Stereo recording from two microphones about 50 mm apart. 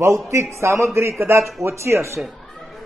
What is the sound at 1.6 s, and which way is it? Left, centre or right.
Speech, right.